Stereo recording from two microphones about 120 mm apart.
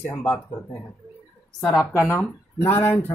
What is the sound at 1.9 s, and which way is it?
Speech, 20° left (ahead or behind).